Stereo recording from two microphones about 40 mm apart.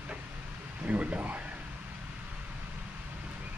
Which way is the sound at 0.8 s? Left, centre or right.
Right.